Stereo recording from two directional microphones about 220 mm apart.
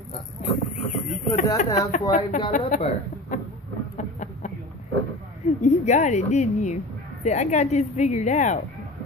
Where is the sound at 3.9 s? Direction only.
35° left (ahead or behind).